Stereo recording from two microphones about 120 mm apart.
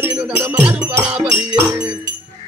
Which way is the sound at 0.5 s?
20° right (ahead or behind).